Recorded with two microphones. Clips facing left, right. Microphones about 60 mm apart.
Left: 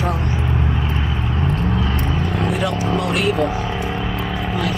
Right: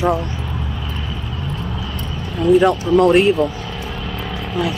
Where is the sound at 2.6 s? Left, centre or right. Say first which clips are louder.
Right 7 dB; right.